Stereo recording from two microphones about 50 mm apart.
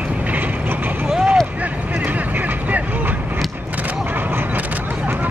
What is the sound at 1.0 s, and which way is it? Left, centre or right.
Vehicle, centre.